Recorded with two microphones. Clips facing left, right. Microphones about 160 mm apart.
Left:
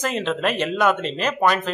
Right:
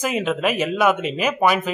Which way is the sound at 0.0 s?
5° right (ahead or behind).